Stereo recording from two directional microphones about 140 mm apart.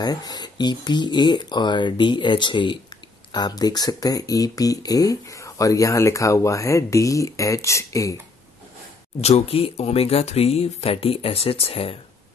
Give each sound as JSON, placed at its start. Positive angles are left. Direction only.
{"t": 0.0, "sound": "speech", "side_deg": 30}
{"t": 9.2, "sound": "speech", "side_deg": 45}